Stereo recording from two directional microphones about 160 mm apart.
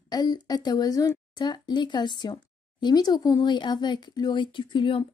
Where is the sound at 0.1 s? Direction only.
25° left (ahead or behind).